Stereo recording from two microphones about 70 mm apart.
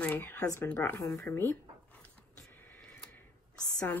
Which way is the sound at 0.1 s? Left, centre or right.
Left.